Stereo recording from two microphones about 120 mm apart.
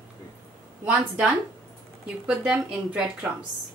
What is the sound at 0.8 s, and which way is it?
Speech, 10° right (ahead or behind).